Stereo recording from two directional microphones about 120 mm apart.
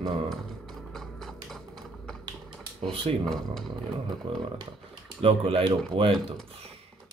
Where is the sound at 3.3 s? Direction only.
Centre (ahead or behind).